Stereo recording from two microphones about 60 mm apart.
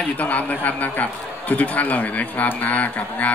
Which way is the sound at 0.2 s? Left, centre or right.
Left.